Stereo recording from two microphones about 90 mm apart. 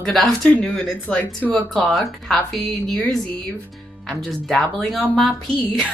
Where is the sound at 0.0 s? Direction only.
5° left (ahead or behind).